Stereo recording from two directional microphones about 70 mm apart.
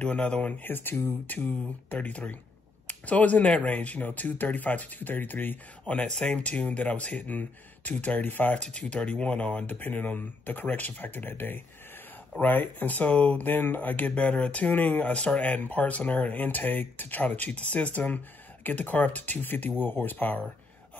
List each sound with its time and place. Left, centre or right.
0.0 s speech: centre
0.7 s speech: left
8.5 s speech: centre